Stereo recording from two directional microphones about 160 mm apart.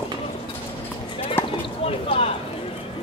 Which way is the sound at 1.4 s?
15° left (ahead or behind).